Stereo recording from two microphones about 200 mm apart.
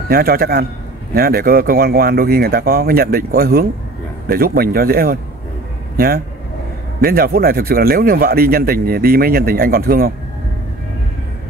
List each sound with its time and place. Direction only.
0.1 s speech: 50° right (ahead or behind)